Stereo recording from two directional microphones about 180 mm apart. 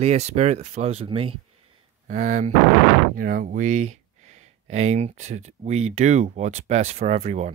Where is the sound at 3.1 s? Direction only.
50° right (ahead or behind).